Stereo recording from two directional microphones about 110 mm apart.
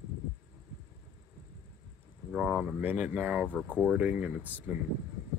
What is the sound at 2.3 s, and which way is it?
Speech, 5° right (ahead or behind).